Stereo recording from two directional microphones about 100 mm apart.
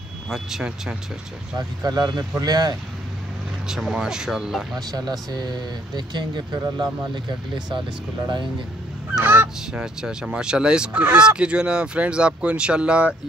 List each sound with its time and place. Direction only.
0.3 s speech: 5° right (ahead or behind)
1.6 s speech: 40° right (ahead or behind)
3.6 s speech: 5° right (ahead or behind)
4.7 s speech: 40° right (ahead or behind)
9.2 s honk: 20° right (ahead or behind)
9.7 s speech: 5° right (ahead or behind)